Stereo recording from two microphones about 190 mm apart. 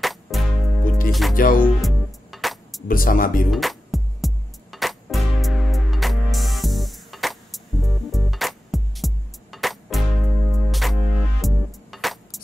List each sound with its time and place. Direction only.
0.0 s music: centre (ahead or behind)
1.3 s music: 45° left (ahead or behind)
1.8 s music: centre (ahead or behind)
2.9 s speech: 45° left (ahead or behind)
3.5 s music: centre (ahead or behind)